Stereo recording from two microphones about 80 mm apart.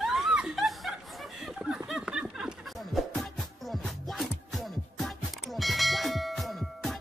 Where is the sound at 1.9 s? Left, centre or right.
Centre.